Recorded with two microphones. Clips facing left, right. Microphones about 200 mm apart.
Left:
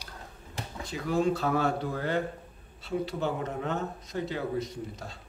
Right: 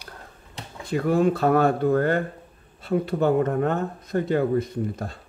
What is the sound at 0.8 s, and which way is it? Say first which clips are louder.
Speech: right 7 dB; 55° right (ahead or behind).